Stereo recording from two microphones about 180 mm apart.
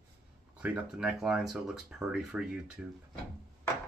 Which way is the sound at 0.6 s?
5° right (ahead or behind).